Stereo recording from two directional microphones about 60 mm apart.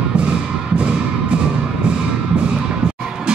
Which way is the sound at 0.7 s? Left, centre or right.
Centre.